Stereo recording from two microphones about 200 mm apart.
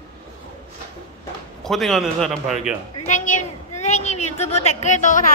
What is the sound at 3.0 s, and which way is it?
A woman's voice, 35° left (ahead or behind).